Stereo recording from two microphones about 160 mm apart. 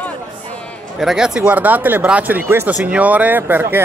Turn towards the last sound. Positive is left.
turn(degrees=-15)  # may be behind; listen again after turning